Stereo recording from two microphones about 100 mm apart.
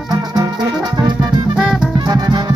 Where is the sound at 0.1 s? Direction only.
45° right (ahead or behind).